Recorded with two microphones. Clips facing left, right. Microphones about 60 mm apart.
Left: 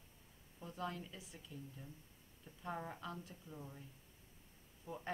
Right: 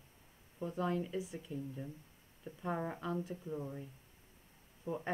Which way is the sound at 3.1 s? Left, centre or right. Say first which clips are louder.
Right 11 dB; centre.